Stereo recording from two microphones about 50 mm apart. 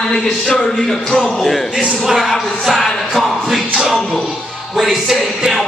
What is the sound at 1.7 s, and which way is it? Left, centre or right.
Speech, centre.